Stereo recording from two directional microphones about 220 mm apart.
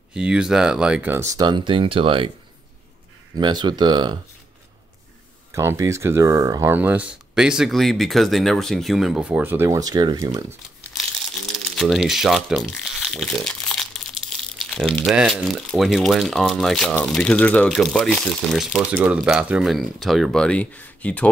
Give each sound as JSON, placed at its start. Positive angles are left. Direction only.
{"t": 0.1, "sound": "speech", "side_deg": -5}
{"t": 3.3, "sound": "speech", "side_deg": -20}
{"t": 5.5, "sound": "speech", "side_deg": -10}
{"t": 11.5, "sound": "speech", "side_deg": 0}